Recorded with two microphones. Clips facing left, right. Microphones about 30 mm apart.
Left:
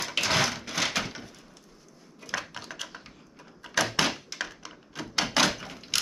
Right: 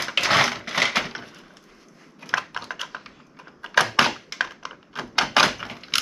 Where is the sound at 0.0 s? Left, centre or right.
Right.